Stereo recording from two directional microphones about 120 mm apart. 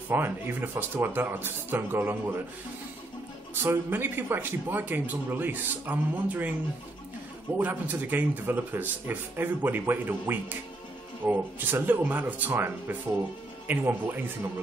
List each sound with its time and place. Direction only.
0.1 s speech: 15° right (ahead or behind)
3.5 s speech: 20° right (ahead or behind)
7.5 s speech: 15° right (ahead or behind)